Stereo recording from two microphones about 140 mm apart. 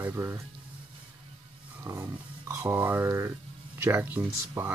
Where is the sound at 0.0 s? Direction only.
15° right (ahead or behind).